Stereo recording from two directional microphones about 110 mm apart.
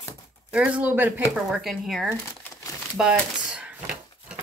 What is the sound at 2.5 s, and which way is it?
Crumpling, 30° left (ahead or behind).